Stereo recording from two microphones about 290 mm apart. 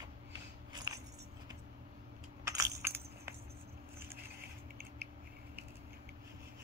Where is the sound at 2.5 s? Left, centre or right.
Centre.